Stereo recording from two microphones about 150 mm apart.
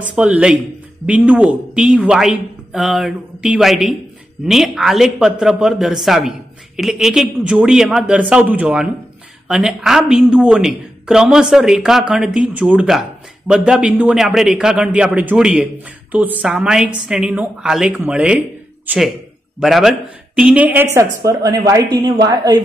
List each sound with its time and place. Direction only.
0.0 s a man's voice: 10° right (ahead or behind)
19.6 s speech: centre (ahead or behind); by 22.6 s 25° right (ahead or behind)